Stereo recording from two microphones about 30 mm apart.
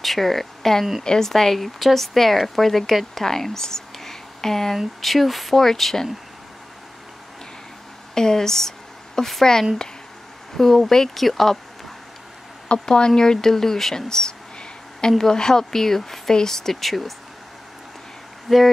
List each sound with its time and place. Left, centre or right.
0.0 s speech: centre
5.0 s speech: centre
8.1 s a sound: centre
9.4 s speech: centre
12.8 s speech: left
13.9 s a sound: left
15.3 s speech: left
16.8 s speech: centre
18.5 s speech: centre